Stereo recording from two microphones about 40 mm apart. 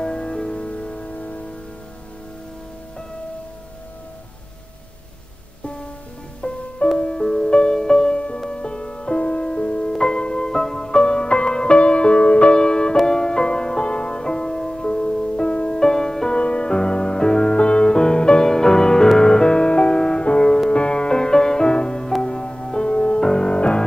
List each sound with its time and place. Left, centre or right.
0.0 s music: left
6.4 s music: left
15.8 s music: centre
16.3 s music: left